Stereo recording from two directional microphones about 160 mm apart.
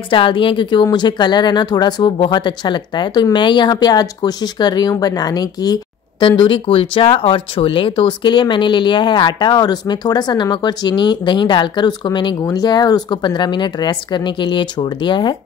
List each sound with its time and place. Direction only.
0.1 s speech: 30° left (ahead or behind)